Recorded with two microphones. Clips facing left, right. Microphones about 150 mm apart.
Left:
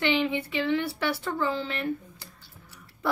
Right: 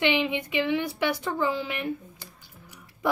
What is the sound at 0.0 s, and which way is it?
Speech, 15° right (ahead or behind).